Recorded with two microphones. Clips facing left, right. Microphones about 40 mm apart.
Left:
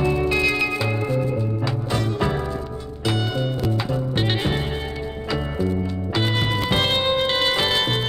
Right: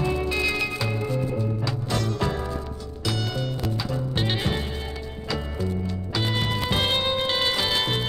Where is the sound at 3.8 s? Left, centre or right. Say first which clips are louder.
Left 4 dB; centre.